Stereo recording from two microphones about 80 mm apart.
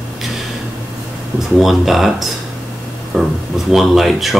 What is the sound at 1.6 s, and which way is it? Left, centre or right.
Speech, centre.